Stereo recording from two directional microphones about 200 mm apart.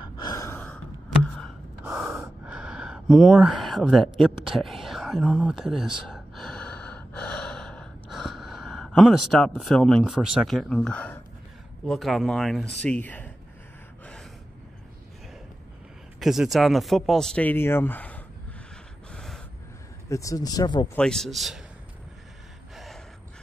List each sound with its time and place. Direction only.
0.0 s gasp: 20° left (ahead or behind)
2.4 s speech: 5° right (ahead or behind)
6.1 s gasp: centre (ahead or behind)
11.8 s speech: centre (ahead or behind)
16.2 s speech: centre (ahead or behind)
19.1 s gasp: centre (ahead or behind)
20.1 s speech: 15° left (ahead or behind)
20.9 s speech: 5° left (ahead or behind)